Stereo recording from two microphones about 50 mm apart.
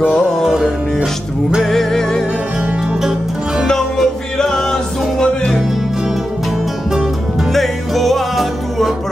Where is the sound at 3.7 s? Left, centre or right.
Centre.